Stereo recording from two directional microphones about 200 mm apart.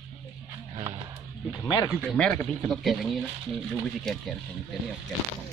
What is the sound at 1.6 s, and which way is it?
Speech, 20° left (ahead or behind).